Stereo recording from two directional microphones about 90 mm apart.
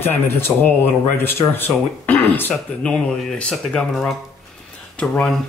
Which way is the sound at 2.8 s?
10° left (ahead or behind).